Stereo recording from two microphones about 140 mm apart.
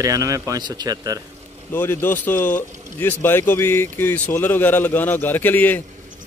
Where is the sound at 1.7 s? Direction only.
15° left (ahead or behind).